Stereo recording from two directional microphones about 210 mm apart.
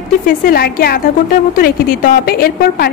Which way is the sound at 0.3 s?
45° left (ahead or behind).